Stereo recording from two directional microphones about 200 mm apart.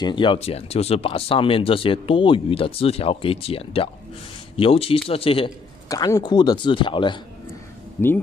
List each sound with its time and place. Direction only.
0.0 s speech: 25° left (ahead or behind)
5.9 s speech: 15° left (ahead or behind)